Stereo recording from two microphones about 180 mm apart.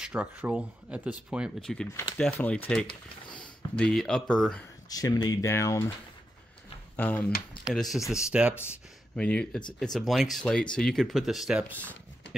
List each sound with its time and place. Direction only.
0.0 s speech: 5° right (ahead or behind)
4.8 s speech: 20° left (ahead or behind)
7.0 s speech: 10° left (ahead or behind)
7.6 s speech: centre (ahead or behind)
9.1 s speech: 5° left (ahead or behind)